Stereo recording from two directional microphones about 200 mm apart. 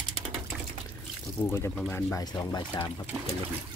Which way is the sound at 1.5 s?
10° left (ahead or behind).